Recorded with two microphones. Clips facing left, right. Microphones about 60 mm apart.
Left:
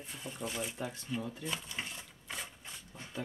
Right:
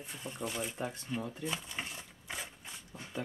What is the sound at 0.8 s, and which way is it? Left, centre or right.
Speech, centre.